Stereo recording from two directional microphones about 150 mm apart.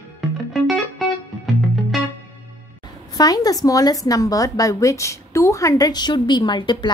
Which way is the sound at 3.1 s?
25° left (ahead or behind).